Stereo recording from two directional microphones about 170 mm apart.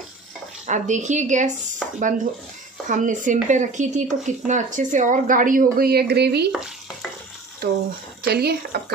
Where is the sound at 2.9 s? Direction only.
50° right (ahead or behind); by 6.5 s 75° right (ahead or behind).